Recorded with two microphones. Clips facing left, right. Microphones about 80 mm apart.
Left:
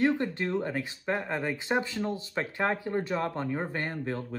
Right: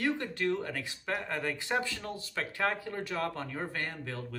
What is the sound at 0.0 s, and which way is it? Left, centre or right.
Speech, left.